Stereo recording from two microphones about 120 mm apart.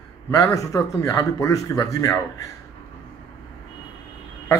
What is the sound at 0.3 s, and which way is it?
Speech, 25° left (ahead or behind).